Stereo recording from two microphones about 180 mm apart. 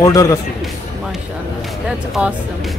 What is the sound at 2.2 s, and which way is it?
Speech, 5° right (ahead or behind).